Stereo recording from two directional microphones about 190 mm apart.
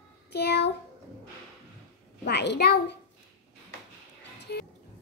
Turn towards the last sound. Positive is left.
turn(degrees=60)  # may be behind; listen again after turning